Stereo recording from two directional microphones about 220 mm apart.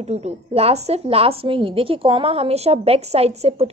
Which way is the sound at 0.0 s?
30° right (ahead or behind).